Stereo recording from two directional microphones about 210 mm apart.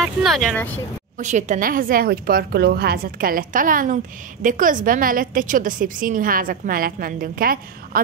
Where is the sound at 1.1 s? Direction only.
35° right (ahead or behind).